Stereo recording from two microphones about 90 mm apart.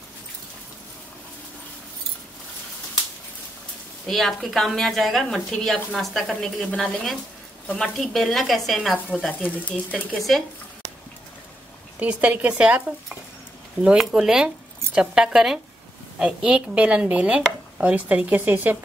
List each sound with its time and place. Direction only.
4.1 s a woman's voice: centre (ahead or behind)
9.3 s speech: 20° left (ahead or behind)
10.1 s a woman's voice: centre (ahead or behind)
12.0 s a woman's voice: 15° right (ahead or behind)